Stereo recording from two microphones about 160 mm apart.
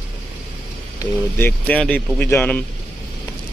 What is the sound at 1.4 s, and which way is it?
Speech, 10° left (ahead or behind).